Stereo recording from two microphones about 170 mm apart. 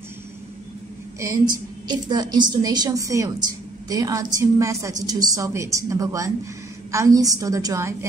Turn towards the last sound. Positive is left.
turn(degrees=-20)  # may be behind; listen again after turning